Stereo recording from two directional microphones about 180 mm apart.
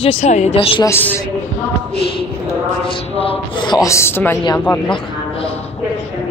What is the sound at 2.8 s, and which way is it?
Speech, 30° left (ahead or behind).